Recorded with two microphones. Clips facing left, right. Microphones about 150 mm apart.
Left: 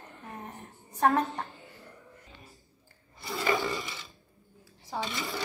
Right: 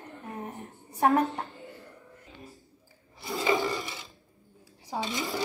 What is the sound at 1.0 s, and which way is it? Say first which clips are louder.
Speech: right 2 dB; 15° right (ahead or behind).